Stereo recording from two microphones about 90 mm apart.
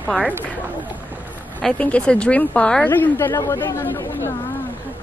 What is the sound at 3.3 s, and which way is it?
Speech, 35° left (ahead or behind).